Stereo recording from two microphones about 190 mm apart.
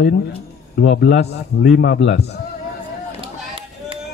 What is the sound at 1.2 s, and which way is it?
A man's voice, 60° left (ahead or behind).